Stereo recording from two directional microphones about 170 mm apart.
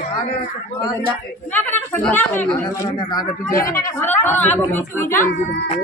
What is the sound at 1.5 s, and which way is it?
Speech, 10° left (ahead or behind).